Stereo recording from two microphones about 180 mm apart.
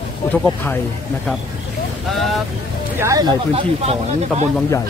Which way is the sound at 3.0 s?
20° right (ahead or behind).